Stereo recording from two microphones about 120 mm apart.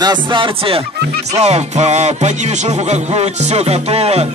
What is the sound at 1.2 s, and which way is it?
Music, 65° right (ahead or behind).